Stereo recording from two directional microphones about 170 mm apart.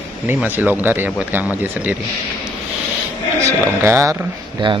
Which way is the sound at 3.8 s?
15° right (ahead or behind).